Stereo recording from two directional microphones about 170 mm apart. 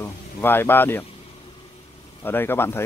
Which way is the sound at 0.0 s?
15° left (ahead or behind).